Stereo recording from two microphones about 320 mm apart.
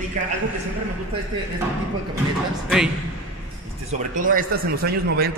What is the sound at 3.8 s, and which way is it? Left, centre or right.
Speech, right.